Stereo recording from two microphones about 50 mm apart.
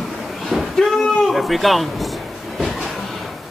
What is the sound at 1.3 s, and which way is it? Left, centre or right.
Speech, centre.